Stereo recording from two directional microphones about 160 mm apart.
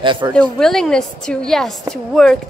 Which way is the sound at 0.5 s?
5° left (ahead or behind).